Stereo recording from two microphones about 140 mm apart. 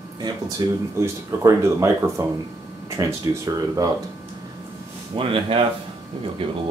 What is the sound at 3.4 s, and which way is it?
Speech, 25° right (ahead or behind).